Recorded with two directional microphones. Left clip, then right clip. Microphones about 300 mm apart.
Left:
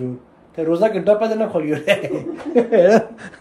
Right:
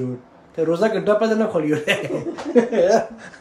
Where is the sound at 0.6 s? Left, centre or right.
Centre.